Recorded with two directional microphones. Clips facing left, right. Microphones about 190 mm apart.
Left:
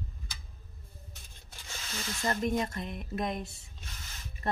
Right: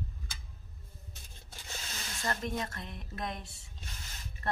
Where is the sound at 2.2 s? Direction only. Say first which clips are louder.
Left 5 dB; 20° left (ahead or behind).